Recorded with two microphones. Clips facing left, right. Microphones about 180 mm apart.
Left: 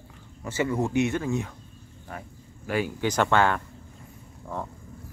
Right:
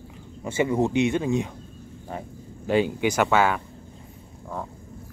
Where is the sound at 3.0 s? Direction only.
10° right (ahead or behind).